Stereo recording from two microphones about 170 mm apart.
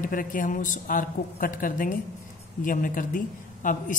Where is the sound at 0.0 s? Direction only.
55° left (ahead or behind).